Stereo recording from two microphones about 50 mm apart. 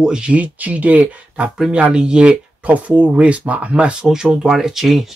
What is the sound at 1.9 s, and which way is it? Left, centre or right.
Speech, centre.